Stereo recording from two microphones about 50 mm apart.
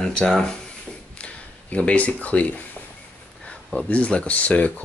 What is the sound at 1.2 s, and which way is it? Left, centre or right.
Speech, left.